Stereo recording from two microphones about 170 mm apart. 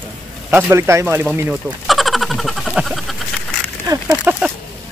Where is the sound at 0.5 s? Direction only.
10° right (ahead or behind).